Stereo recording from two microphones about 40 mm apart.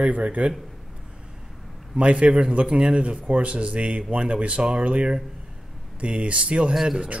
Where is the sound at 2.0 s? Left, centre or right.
Right.